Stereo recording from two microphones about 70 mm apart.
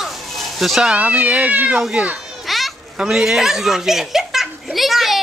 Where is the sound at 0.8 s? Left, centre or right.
Centre.